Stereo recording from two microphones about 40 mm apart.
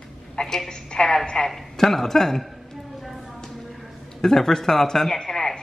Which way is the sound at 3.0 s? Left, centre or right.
Centre.